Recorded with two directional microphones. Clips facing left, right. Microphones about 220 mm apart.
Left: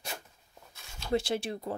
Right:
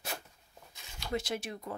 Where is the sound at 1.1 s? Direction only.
30° left (ahead or behind).